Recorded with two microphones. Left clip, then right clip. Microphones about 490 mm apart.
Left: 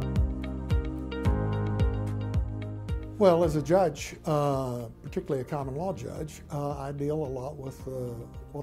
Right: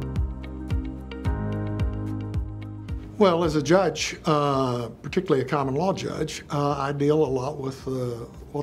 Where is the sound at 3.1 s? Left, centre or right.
Left.